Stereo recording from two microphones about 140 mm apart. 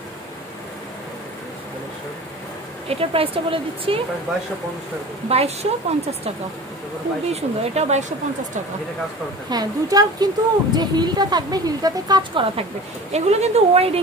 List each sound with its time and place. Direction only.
2.9 s speech: 45° right (ahead or behind)
5.3 s a woman's voice: 45° right (ahead or behind)
7.3 s a woman's voice: 50° right (ahead or behind)
9.5 s a woman's voice: 25° right (ahead or behind)
13.1 s a woman's voice: 50° right (ahead or behind)